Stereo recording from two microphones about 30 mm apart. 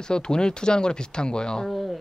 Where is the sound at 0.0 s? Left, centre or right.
Left.